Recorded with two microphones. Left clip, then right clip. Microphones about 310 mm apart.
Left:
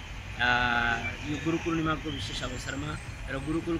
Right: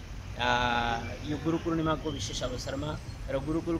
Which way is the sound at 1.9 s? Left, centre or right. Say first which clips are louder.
Even; centre.